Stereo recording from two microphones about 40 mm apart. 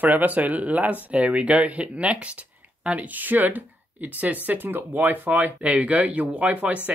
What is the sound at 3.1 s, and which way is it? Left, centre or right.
Speech, right.